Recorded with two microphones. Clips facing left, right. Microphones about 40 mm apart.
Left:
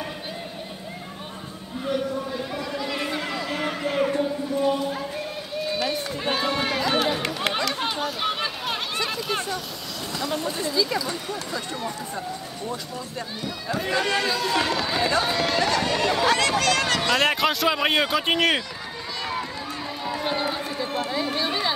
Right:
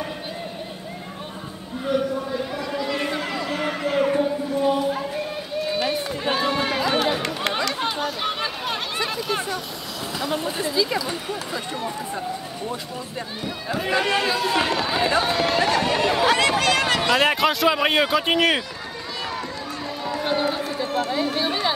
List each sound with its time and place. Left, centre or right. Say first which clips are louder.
1.9 s a sound: right 3 dB; centre
5.8 s run: right 2 dB; centre
10.1 s speech: right 2 dB; centre
13.4 s speech: right 1 dB; centre
17.2 s speech: right 2 dB; centre
20.4 s run: right 3 dB; centre
21.4 s chatter: right 2 dB; centre